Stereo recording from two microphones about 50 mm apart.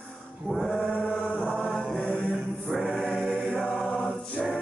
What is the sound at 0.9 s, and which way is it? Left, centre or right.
Chant, right.